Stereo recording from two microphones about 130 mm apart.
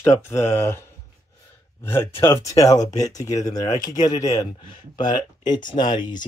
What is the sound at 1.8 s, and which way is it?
Speech, 20° left (ahead or behind).